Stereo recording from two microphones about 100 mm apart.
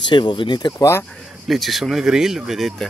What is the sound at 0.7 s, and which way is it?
Speech, 30° left (ahead or behind).